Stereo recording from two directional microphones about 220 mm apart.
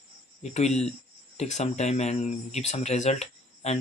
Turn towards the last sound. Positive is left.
turn(degrees=30)  # may be behind; listen again after turning